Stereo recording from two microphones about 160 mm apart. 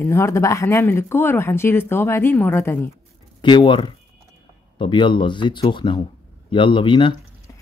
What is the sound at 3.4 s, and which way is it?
Speech, 30° left (ahead or behind).